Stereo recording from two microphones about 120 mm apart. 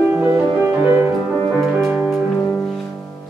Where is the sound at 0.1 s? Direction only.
20° right (ahead or behind).